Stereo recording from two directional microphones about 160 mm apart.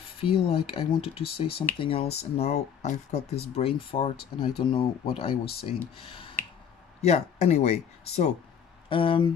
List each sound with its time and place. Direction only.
0.2 s speech: 35° left (ahead or behind)